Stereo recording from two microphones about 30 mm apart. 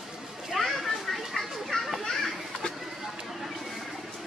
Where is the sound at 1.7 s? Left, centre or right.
Left.